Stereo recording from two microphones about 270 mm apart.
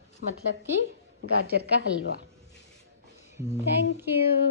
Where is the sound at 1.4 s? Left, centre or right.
Right.